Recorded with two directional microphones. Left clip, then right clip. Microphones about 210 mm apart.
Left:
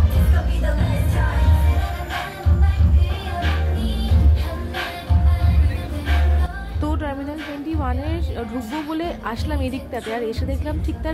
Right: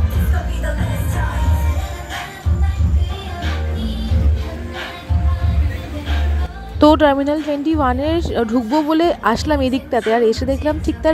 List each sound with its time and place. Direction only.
6.8 s speech: 40° right (ahead or behind)